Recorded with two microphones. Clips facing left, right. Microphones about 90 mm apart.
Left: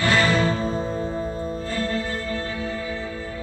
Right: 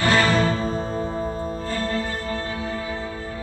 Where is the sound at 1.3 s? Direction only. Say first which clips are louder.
Right 1 dB; 45° right (ahead or behind).